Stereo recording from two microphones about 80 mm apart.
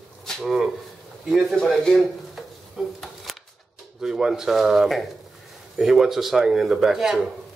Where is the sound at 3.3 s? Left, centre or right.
Centre.